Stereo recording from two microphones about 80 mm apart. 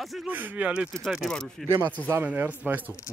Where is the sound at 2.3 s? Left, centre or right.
Right.